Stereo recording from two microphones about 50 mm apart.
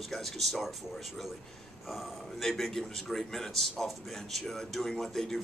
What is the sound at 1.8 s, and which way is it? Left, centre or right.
A man's voice, centre.